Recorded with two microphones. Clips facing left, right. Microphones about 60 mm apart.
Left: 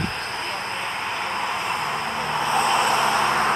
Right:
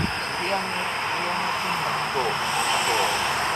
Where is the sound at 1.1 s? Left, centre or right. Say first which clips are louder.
Even; centre.